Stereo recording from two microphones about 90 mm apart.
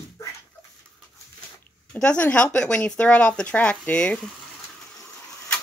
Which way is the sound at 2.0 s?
15° left (ahead or behind).